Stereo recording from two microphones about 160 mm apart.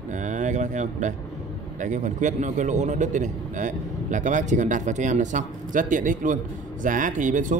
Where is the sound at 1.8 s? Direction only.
50° right (ahead or behind).